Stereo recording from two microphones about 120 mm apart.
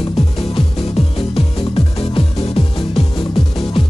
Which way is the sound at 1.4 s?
55° left (ahead or behind).